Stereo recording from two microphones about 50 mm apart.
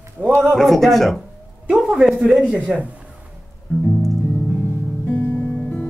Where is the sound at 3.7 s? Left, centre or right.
Left.